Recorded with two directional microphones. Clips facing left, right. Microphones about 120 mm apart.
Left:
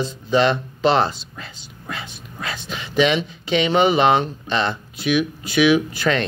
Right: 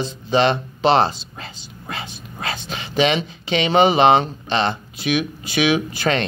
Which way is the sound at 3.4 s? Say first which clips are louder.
Left 2 dB; 90° right.